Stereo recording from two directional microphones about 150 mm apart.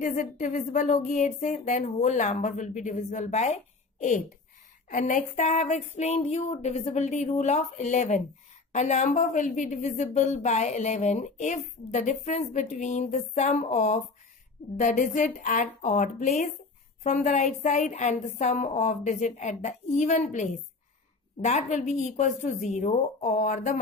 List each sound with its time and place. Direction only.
0.0 s speech: 55° left (ahead or behind)
4.8 s a woman's voice: 60° left (ahead or behind)